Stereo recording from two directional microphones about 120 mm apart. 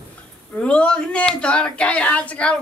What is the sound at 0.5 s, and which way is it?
Speech, 10° left (ahead or behind).